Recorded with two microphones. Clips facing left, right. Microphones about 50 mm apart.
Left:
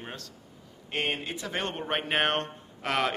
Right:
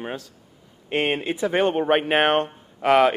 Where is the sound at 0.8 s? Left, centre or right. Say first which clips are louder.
Right 8 dB; right.